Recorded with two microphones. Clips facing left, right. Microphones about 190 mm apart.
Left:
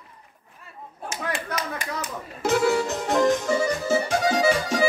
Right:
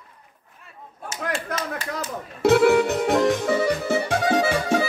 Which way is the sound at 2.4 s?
60° right (ahead or behind).